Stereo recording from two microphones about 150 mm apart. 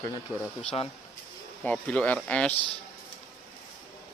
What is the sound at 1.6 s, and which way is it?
Speech, 10° left (ahead or behind).